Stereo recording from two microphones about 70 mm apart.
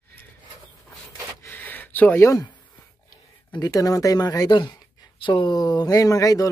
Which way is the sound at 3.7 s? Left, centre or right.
Left.